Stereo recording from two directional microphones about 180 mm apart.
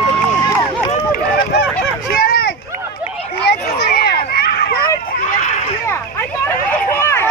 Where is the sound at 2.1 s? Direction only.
60° left (ahead or behind).